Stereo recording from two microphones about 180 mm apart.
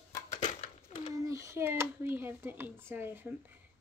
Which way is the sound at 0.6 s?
30° left (ahead or behind).